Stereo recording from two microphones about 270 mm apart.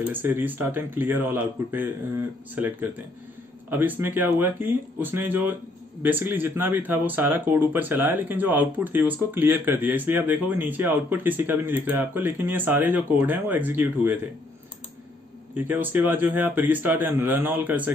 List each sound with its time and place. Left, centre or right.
0.0 s speech: centre
15.5 s speech: centre